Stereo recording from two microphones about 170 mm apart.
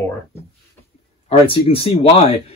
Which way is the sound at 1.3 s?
35° left (ahead or behind).